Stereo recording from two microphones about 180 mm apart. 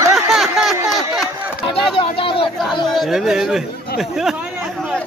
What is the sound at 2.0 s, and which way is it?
Chatter, 30° left (ahead or behind).